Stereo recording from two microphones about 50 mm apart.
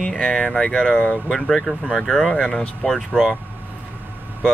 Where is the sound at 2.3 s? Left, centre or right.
Left.